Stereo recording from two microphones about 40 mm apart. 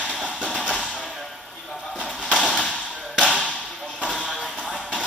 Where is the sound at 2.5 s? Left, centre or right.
Left.